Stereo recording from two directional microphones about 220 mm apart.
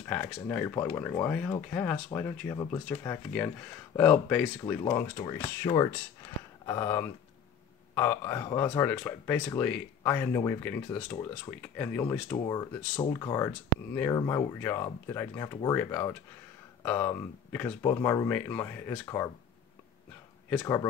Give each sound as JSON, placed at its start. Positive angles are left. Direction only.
{"t": 0.0, "sound": "speech", "side_deg": 10}
{"t": 20.4, "sound": "speech", "side_deg": 10}